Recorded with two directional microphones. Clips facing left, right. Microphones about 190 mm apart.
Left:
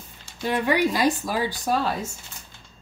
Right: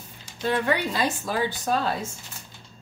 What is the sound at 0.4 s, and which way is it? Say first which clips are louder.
Speech: left 2 dB; 10° left (ahead or behind).